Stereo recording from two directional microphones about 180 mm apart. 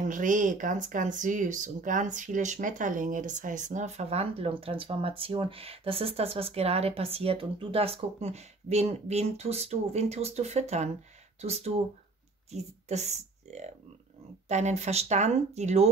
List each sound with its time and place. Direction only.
0.0 s speech: 45° right (ahead or behind)